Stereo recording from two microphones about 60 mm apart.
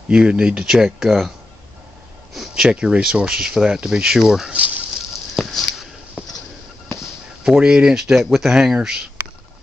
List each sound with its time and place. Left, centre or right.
0.1 s speech: centre
2.5 s speech: centre
4.5 s speech: right
5.3 s a sound: centre
6.2 s a sound: centre
7.4 s speech: centre